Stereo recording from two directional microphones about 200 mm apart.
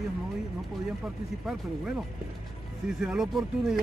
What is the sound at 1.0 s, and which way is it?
Speech, 5° right (ahead or behind).